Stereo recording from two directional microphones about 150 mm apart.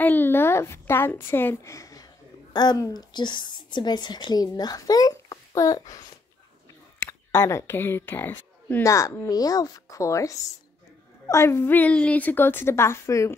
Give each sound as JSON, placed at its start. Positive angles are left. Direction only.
{"t": 0.0, "sound": "a woman's voice", "side_deg": 15}
{"t": 7.0, "sound": "a woman's voice", "side_deg": 15}